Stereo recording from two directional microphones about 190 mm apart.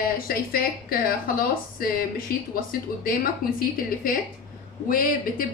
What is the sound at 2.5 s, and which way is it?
A woman's voice, 50° left (ahead or behind).